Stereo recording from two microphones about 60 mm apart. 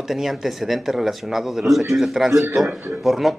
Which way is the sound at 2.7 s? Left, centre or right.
Right.